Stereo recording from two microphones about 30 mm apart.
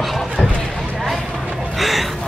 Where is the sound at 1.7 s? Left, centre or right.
Centre.